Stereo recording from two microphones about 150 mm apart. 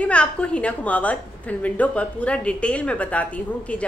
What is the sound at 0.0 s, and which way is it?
A woman's voice, 10° left (ahead or behind).